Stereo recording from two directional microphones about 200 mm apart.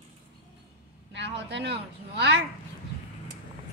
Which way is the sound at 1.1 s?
60° right (ahead or behind).